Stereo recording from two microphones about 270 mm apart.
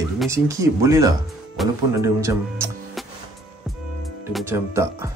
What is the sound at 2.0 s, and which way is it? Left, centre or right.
Speech, centre.